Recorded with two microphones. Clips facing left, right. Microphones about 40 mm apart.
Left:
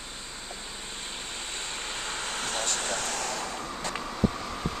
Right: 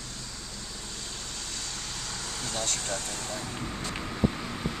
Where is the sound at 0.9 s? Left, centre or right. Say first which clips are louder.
Left 3 dB; left.